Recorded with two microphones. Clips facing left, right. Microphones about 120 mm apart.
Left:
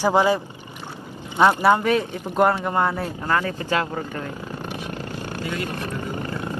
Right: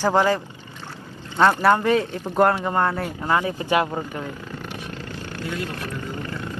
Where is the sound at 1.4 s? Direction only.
15° left (ahead or behind).